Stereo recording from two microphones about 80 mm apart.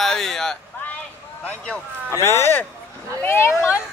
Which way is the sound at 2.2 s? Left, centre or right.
Left.